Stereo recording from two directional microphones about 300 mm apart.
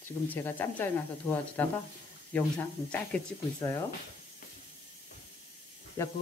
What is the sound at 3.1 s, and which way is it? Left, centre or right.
Speech, centre.